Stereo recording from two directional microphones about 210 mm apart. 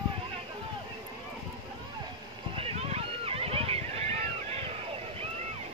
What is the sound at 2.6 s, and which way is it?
Boat, 30° right (ahead or behind).